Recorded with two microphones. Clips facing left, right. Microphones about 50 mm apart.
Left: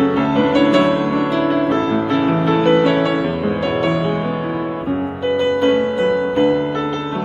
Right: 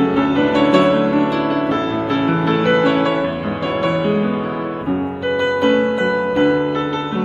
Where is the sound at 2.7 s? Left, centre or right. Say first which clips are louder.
Left 1 dB; right.